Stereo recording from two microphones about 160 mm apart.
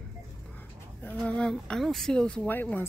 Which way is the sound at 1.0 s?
10° left (ahead or behind).